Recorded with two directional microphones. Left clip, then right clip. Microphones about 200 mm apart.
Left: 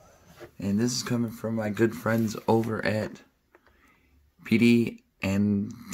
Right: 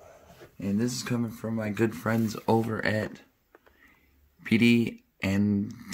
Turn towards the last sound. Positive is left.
turn(degrees=0)  # may be behind; listen again after turning